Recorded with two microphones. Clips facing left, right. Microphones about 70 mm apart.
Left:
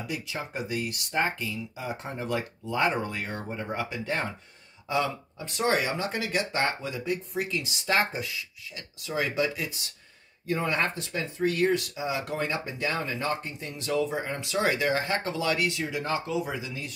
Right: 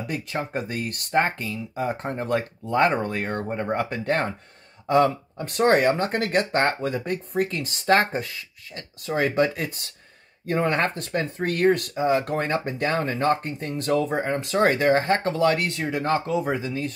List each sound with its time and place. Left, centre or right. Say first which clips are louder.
0.0 s speech: right 5 dB; right